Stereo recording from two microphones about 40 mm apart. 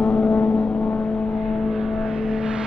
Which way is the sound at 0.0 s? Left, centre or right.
Left.